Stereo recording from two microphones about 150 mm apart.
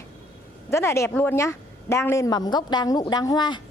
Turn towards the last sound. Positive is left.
turn(degrees=25)  # may be behind; listen again after turning